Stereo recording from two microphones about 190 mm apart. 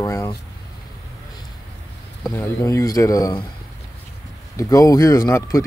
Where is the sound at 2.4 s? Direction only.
15° left (ahead or behind).